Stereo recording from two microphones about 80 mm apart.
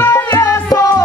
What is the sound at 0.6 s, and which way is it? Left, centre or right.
Music, left.